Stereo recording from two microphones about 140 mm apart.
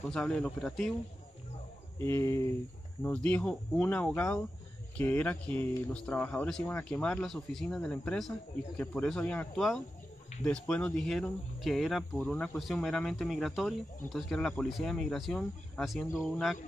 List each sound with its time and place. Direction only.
0.1 s speech: 5° left (ahead or behind)
2.0 s speech: 15° left (ahead or behind)
3.0 s speech: 10° left (ahead or behind)